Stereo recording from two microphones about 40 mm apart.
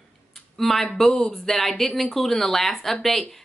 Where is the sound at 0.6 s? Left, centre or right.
Centre.